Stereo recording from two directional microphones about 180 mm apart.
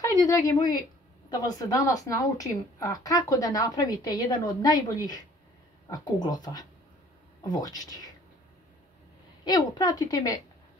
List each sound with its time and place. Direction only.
0.0 s a woman's voice: 20° left (ahead or behind)
9.4 s a woman's voice: 25° left (ahead or behind)